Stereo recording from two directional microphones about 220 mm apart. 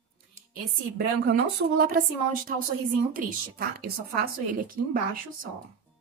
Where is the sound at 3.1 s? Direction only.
40° right (ahead or behind).